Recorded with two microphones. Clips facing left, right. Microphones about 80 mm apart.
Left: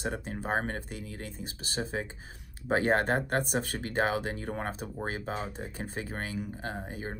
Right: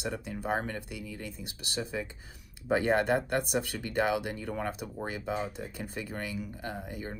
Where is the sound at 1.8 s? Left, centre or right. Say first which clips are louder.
Left 1 dB; left.